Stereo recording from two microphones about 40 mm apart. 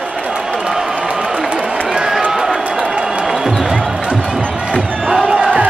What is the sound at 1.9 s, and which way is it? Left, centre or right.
Run, centre.